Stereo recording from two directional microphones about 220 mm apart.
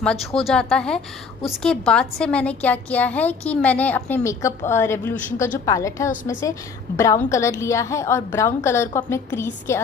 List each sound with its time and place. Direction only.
0.0 s a woman's voice: centre (ahead or behind)